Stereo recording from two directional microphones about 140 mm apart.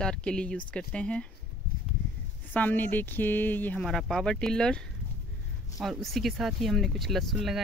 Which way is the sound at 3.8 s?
Centre (ahead or behind).